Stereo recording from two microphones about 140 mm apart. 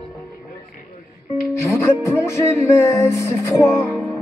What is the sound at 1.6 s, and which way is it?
Music, 20° left (ahead or behind).